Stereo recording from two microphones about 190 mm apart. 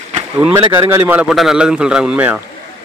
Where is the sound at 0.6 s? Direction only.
25° right (ahead or behind).